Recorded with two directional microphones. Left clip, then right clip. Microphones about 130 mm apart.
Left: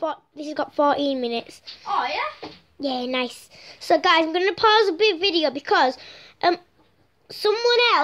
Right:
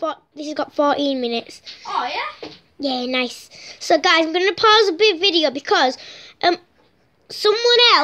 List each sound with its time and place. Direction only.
0.0 s a woman's voice: 5° right (ahead or behind)
7.5 s a child's voice: 25° right (ahead or behind)